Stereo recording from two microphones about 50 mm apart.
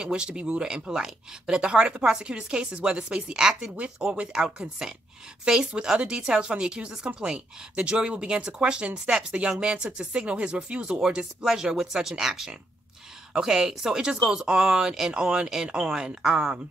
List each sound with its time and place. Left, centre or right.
0.0 s speech: centre
3.7 s speech: right
11.0 s speech: centre